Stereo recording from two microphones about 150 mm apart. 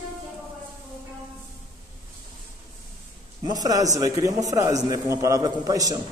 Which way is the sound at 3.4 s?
25° right (ahead or behind).